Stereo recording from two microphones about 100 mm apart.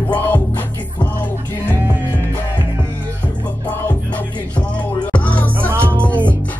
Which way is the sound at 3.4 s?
15° left (ahead or behind).